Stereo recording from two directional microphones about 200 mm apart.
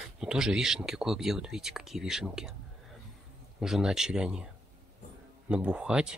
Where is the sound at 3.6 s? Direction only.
Centre (ahead or behind).